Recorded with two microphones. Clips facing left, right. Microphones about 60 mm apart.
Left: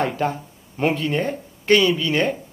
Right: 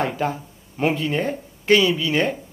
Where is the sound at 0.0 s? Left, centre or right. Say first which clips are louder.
Left 1 dB; centre.